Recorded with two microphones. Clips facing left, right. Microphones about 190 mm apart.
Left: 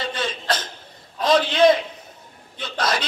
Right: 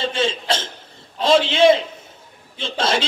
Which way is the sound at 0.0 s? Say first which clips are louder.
Right 5 dB; 25° right (ahead or behind).